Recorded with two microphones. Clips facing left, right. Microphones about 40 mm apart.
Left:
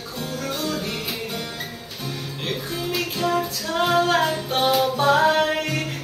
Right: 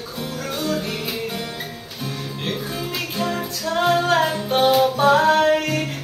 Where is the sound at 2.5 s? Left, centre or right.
Centre.